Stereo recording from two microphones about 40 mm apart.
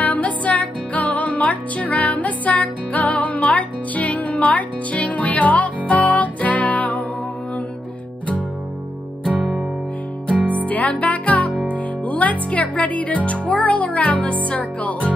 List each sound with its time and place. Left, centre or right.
0.0 s music: left
10.3 s music: right
10.6 s music: left
11.7 s speech: left